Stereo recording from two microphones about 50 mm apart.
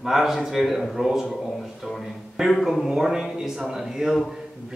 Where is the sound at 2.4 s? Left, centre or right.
Centre.